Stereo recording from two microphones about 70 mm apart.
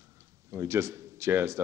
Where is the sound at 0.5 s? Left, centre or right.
Right.